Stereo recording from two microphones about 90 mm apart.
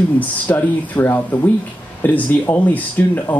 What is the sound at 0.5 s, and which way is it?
Speech, 30° left (ahead or behind).